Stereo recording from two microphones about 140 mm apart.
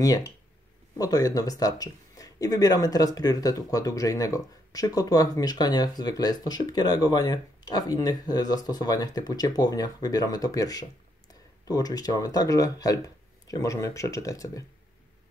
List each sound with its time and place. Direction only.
0.0 s speech: 25° left (ahead or behind)